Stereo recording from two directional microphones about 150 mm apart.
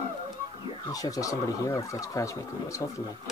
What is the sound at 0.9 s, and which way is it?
Speech, 25° left (ahead or behind).